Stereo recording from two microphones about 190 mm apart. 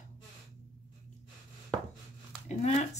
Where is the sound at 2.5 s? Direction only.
35° left (ahead or behind).